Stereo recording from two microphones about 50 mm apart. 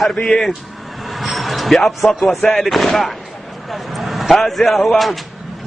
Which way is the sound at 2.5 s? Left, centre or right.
Centre.